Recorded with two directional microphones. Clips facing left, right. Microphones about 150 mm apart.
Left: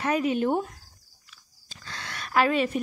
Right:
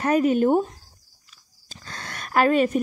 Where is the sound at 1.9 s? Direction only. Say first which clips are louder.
Right 2 dB; 45° right (ahead or behind).